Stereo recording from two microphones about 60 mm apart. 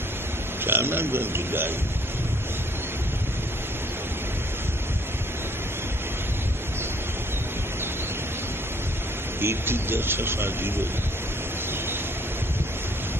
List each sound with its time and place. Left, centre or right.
0.7 s speech: right
9.4 s speech: right